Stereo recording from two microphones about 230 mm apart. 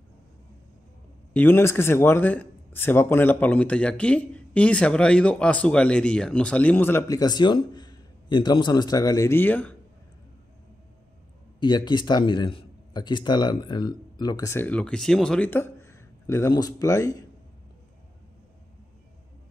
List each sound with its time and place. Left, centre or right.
1.3 s speech: centre
11.6 s speech: centre